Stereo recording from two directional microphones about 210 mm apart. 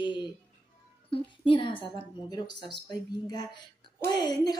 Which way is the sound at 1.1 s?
25° left (ahead or behind).